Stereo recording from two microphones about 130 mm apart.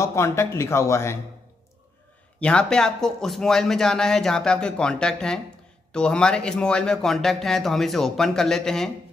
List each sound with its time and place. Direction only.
0.0 s speech: 20° left (ahead or behind)
2.4 s speech: 5° left (ahead or behind)